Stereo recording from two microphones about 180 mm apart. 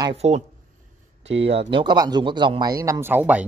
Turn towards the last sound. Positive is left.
turn(degrees=-10)  # may be behind; listen again after turning